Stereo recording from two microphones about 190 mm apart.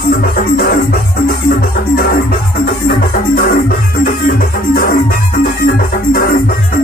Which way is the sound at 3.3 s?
50° left (ahead or behind).